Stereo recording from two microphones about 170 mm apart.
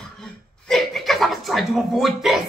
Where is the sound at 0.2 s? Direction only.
Centre (ahead or behind).